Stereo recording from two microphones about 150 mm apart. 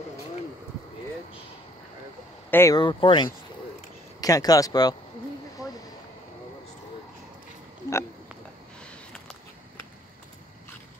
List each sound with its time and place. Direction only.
2.5 s speech: 20° left (ahead or behind)
2.8 s speech: 30° left (ahead or behind)